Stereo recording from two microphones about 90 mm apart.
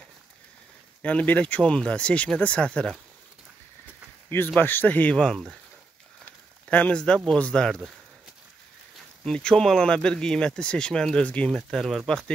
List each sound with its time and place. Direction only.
1.0 s speech: 15° left (ahead or behind)
4.6 s speech: 20° left (ahead or behind)
5.1 s speech: 5° left (ahead or behind)
6.7 s speech: 15° left (ahead or behind)
9.2 s speech: 10° left (ahead or behind)
11.5 s speech: centre (ahead or behind)